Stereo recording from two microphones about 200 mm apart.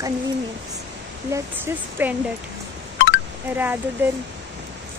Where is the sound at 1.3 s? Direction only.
10° right (ahead or behind).